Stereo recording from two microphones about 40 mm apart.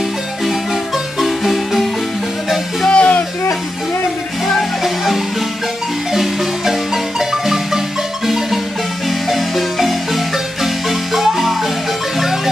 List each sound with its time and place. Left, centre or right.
0.5 s marimba: centre
2.9 s a sound: left
4.8 s marimba: centre
9.0 s marimba: centre